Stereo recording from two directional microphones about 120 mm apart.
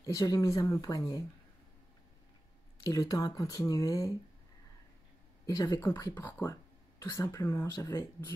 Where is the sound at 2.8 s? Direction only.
30° left (ahead or behind).